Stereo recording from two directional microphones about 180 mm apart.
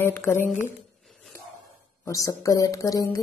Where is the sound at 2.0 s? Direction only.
15° left (ahead or behind).